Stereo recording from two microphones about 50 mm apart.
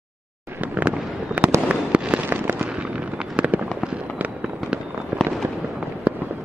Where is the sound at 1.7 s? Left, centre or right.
Right.